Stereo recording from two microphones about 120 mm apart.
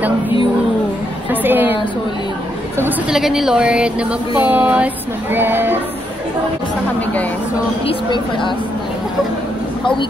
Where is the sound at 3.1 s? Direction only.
5° right (ahead or behind).